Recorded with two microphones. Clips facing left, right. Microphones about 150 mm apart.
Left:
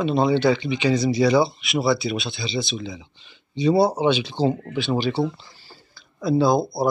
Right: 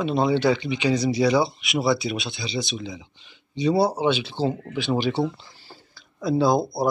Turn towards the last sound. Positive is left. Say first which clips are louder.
# left 1 dB
turn(degrees=-15)  # may be behind; listen again after turning